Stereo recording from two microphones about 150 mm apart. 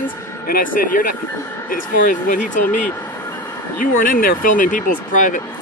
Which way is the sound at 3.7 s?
70° left (ahead or behind).